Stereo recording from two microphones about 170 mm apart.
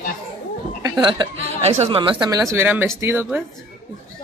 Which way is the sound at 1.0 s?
30° right (ahead or behind).